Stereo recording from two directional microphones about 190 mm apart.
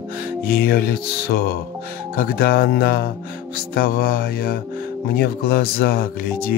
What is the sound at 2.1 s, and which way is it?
Music, 50° left (ahead or behind).